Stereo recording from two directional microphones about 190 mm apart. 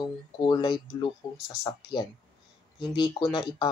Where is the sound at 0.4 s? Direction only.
25° left (ahead or behind).